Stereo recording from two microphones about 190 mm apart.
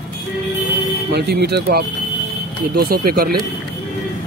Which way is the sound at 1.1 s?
60° right (ahead or behind).